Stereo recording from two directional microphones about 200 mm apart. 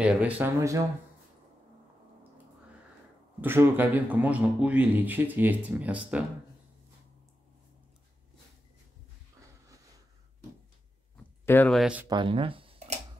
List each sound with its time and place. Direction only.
0.0 s speech: 5° right (ahead or behind)
3.3 s speech: 10° right (ahead or behind)
11.4 s speech: 10° left (ahead or behind)
12.1 s speech: 25° right (ahead or behind)